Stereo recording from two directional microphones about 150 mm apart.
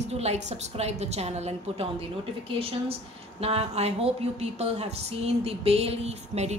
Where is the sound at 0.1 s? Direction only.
45° right (ahead or behind).